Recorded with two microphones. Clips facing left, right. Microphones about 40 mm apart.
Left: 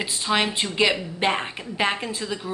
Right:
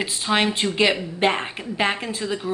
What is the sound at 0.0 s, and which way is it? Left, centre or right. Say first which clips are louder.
A woman's voice: right 2 dB; centre.